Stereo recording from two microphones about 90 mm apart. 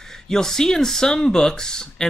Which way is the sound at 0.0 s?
5° left (ahead or behind).